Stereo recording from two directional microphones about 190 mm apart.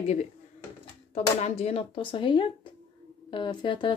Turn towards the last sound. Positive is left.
turn(degrees=25)  # may be behind; listen again after turning